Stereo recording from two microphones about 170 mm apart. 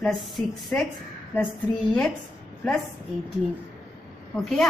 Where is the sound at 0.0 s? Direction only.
Centre (ahead or behind).